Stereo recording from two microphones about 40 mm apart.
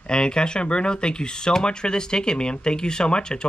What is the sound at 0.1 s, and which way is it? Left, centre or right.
Speech, left.